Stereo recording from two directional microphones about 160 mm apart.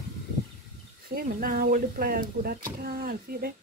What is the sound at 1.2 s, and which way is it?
Speech, 65° right (ahead or behind).